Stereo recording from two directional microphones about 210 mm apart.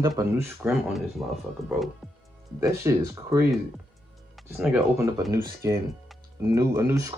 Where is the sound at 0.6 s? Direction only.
10° right (ahead or behind).